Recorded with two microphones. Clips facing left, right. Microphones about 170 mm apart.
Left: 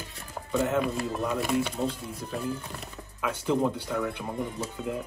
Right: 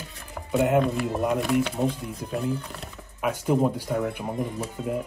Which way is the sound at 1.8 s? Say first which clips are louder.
Right 4 dB; 15° right (ahead or behind).